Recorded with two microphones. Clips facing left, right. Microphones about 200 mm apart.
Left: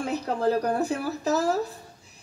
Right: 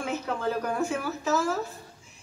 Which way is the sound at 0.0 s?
35° left (ahead or behind).